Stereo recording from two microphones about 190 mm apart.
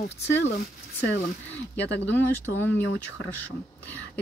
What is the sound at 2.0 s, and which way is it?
Speech, 10° left (ahead or behind).